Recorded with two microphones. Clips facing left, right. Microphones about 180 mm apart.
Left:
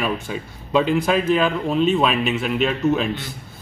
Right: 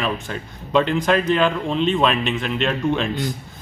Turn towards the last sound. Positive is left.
turn(degrees=5)  # may be behind; listen again after turning